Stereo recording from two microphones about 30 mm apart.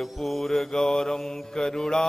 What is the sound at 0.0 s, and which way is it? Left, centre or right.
Mantra, centre.